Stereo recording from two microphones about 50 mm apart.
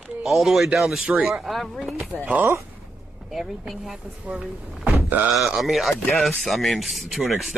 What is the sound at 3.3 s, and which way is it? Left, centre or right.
Speech, centre.